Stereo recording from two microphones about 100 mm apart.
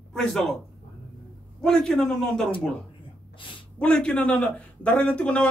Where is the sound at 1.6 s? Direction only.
5° left (ahead or behind).